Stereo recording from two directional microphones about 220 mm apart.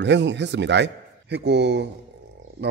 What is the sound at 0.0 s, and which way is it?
Speech, 55° right (ahead or behind).